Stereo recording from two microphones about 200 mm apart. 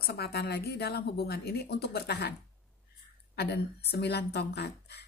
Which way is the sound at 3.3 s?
55° left (ahead or behind).